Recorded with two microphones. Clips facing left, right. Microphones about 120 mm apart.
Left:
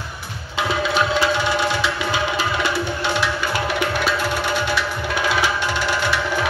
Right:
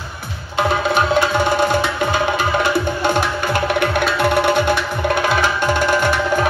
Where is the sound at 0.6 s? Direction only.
50° right (ahead or behind).